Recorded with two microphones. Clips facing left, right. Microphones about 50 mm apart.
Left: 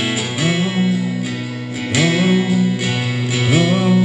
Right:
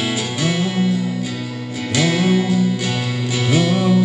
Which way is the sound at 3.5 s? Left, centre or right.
Centre.